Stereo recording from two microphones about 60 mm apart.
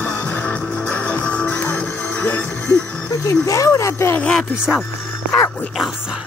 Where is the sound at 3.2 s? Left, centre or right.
Left.